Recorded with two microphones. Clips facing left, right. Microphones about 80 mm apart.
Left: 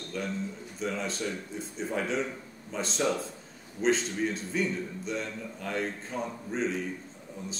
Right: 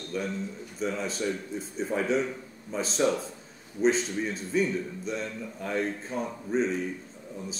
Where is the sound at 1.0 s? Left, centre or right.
Centre.